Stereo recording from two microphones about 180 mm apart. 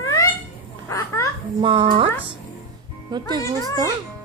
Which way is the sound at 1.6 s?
30° right (ahead or behind).